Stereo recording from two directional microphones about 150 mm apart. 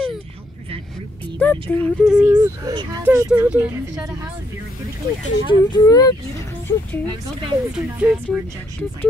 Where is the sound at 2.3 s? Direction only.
25° right (ahead or behind).